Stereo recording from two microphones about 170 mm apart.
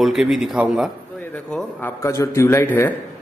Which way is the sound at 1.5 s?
5° left (ahead or behind).